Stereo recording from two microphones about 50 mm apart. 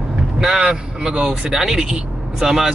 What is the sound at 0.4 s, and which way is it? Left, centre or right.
Speech, centre.